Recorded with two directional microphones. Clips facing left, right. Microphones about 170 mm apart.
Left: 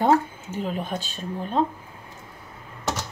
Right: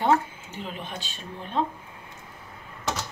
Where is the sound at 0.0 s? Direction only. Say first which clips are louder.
Left 3 dB; 45° left (ahead or behind).